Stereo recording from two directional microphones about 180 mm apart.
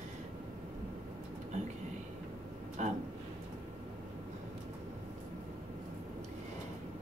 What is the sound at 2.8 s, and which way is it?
Speech, 40° right (ahead or behind).